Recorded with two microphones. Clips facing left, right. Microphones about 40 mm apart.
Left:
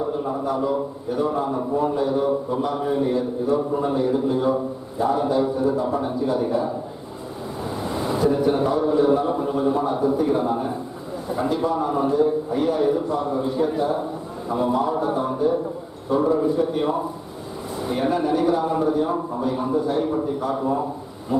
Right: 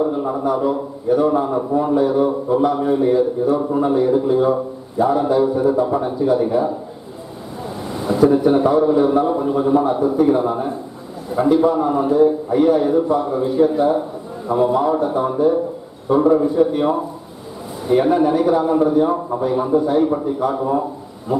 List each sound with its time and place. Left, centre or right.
0.7 s a man's voice: centre
8.3 s a man's voice: centre
18.1 s a man's voice: centre